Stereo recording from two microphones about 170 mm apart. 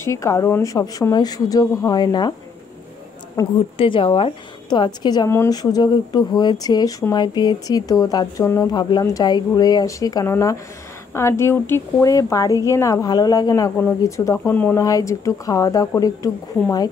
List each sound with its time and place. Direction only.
0.0 s speech: 15° left (ahead or behind)
3.4 s speech: 20° left (ahead or behind)
3.7 s speech: 30° left (ahead or behind)